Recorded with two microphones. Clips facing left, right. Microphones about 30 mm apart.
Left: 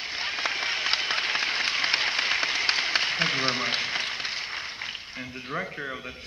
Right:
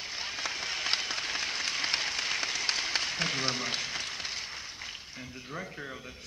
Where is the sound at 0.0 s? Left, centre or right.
Left.